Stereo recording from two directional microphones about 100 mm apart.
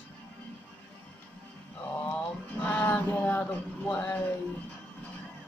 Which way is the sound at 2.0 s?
20° left (ahead or behind).